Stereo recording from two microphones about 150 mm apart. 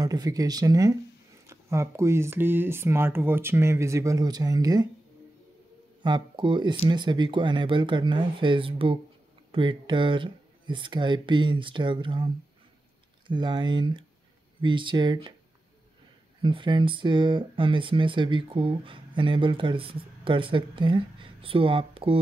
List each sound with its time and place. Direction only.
0.0 s speech: 25° right (ahead or behind)
6.0 s speech: 30° right (ahead or behind)
13.3 s speech: 30° right (ahead or behind)
16.4 s speech: 35° right (ahead or behind)